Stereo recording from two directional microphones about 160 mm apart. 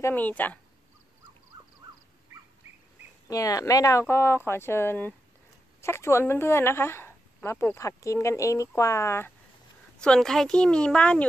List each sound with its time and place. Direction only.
0.0 s speech: 10° left (ahead or behind)
3.3 s speech: 20° left (ahead or behind)
9.9 s speech: 5° left (ahead or behind)